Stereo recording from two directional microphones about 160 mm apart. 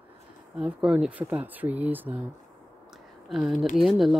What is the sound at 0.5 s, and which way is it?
Speech, 5° right (ahead or behind).